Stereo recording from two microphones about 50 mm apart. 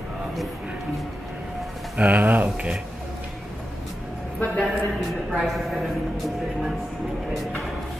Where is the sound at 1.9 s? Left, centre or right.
Right.